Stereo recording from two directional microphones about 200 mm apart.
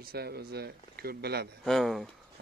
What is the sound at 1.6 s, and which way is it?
Speech, centre (ahead or behind).